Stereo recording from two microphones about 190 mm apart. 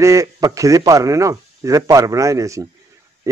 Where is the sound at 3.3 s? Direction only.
15° right (ahead or behind).